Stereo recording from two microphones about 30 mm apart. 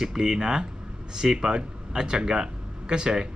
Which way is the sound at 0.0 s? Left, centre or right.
Right.